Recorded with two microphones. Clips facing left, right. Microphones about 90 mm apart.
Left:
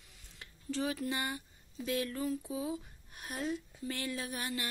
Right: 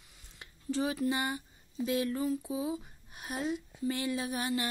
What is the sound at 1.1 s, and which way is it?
Speech, 20° right (ahead or behind).